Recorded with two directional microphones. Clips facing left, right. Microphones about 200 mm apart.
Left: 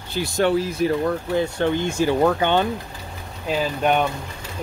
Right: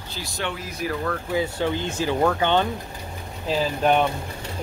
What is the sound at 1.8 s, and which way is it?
Speech, 15° left (ahead or behind).